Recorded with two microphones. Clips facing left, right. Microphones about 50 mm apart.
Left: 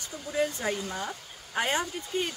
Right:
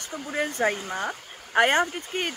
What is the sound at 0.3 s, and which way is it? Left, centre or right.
Speech, right.